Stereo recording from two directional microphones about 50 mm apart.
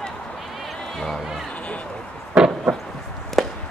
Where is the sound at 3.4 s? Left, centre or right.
Centre.